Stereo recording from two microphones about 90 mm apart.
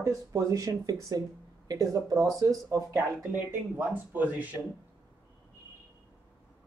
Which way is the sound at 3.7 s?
20° right (ahead or behind).